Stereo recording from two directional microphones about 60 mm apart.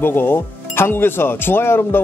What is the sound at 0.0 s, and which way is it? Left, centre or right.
Speech, left.